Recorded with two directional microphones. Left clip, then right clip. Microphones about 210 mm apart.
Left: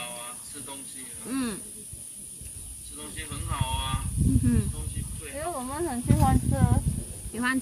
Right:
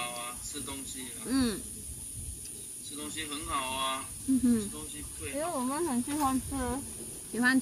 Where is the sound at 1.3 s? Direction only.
10° right (ahead or behind).